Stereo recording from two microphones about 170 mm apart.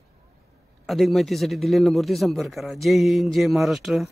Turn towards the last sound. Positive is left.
turn(degrees=0)  # may be behind; listen again after turning